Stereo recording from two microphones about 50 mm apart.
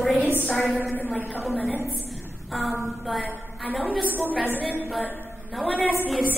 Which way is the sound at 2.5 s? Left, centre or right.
Centre.